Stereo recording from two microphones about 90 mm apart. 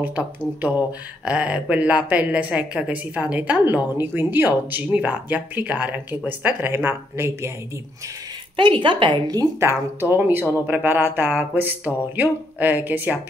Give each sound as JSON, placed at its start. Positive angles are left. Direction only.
{"t": 0.0, "sound": "speech", "side_deg": -20}
{"t": 8.5, "sound": "a woman's voice", "side_deg": -65}
{"t": 9.6, "sound": "speech", "side_deg": -25}